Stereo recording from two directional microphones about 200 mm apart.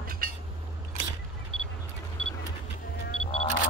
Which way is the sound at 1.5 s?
Centre (ahead or behind).